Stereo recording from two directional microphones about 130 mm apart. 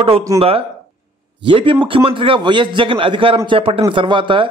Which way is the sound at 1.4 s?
40° right (ahead or behind).